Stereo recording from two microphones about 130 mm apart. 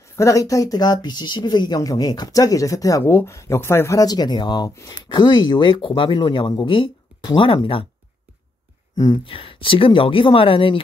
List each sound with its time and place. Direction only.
0.1 s speech: 25° left (ahead or behind); by 7.8 s 45° left (ahead or behind)
8.9 s speech: 30° left (ahead or behind)
9.2 s speech: 45° left (ahead or behind)